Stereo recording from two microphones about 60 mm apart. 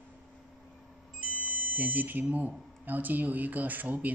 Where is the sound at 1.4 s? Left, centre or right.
Right.